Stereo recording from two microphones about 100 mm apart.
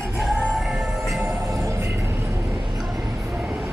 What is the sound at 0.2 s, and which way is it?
Music, 5° right (ahead or behind).